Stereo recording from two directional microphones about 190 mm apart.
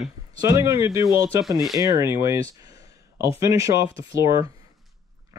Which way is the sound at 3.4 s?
15° right (ahead or behind).